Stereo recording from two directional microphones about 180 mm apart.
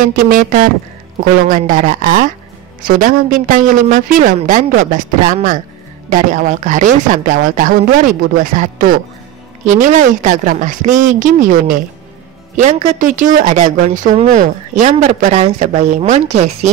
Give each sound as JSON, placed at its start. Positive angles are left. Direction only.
{"t": 0.0, "sound": "speech", "side_deg": -50}